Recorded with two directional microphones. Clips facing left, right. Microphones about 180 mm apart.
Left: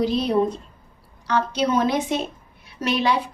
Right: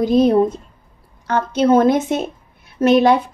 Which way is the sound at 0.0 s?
45° right (ahead or behind).